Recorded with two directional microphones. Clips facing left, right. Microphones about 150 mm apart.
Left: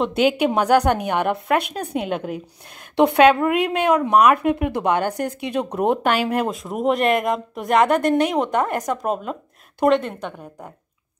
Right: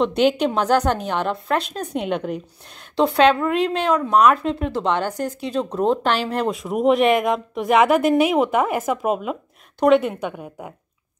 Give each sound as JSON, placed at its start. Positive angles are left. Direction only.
{"t": 0.0, "sound": "a woman's voice", "side_deg": 5}
{"t": 5.1, "sound": "speech", "side_deg": 60}
{"t": 5.6, "sound": "a woman's voice", "side_deg": 15}